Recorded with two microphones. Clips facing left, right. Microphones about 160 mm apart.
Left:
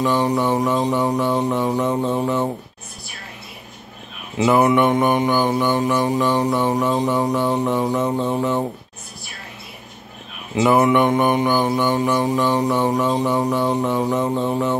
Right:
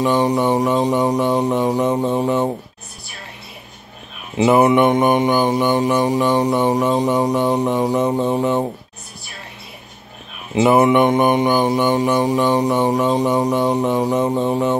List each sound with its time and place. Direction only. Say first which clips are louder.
0.0 s mantra: right 2 dB; 20° right (ahead or behind)
4.4 s mantra: right 3 dB; 20° right (ahead or behind)
10.5 s mantra: right 2 dB; 20° right (ahead or behind)